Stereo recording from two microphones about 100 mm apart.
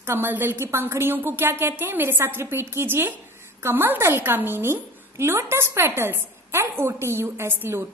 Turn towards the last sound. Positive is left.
turn(degrees=-25)  # may be behind; listen again after turning